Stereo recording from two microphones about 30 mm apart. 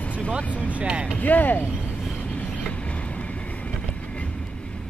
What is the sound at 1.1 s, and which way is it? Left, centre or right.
Speech, left.